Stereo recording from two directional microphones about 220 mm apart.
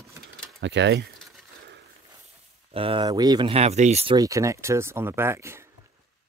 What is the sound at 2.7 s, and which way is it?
Speech, 25° right (ahead or behind).